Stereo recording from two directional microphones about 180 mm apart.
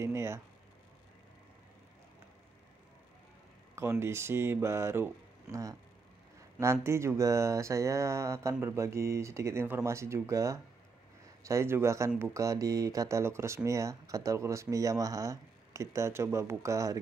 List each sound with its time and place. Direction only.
0.0 s speech: 15° right (ahead or behind)
3.7 s speech: 15° right (ahead or behind)